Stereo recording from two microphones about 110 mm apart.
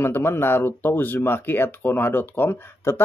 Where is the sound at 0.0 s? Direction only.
20° left (ahead or behind).